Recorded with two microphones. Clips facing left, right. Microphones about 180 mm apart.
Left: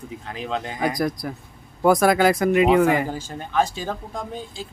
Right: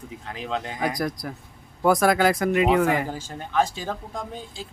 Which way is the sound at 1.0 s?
15° left (ahead or behind).